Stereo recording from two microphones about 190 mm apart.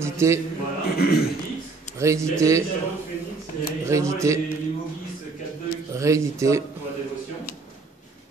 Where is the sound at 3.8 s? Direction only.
15° right (ahead or behind).